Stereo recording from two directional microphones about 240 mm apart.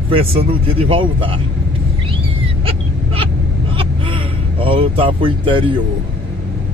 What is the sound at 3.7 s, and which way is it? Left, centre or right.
Vehicle, right.